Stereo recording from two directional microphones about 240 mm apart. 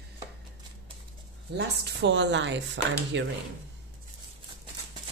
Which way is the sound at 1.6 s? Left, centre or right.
Right.